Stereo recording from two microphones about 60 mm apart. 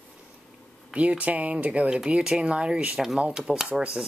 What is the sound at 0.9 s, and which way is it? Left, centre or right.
Speech, right.